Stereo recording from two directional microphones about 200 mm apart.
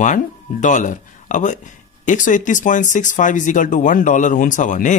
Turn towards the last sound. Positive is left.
turn(degrees=40)  # may be behind; listen again after turning